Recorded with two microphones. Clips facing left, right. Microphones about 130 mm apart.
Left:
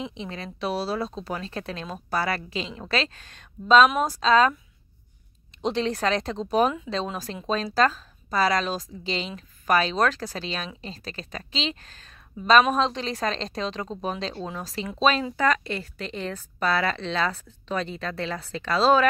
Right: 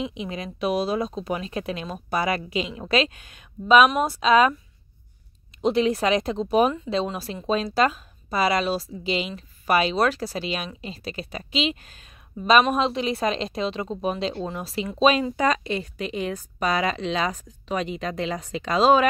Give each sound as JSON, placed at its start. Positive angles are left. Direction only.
{"t": 0.0, "sound": "speech", "side_deg": -15}
{"t": 5.6, "sound": "speech", "side_deg": -5}